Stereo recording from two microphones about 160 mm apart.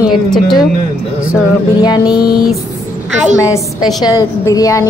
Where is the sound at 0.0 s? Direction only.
Centre (ahead or behind).